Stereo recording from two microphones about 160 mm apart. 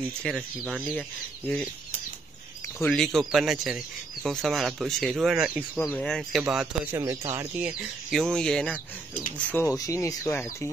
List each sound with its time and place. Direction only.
0.2 s speech: 5° right (ahead or behind)
2.8 s speech: 5° left (ahead or behind)
5.8 s speech: 10° left (ahead or behind)
6.9 s speech: 20° right (ahead or behind)
7.3 s speech: 5° right (ahead or behind); by 10.7 s 15° left (ahead or behind)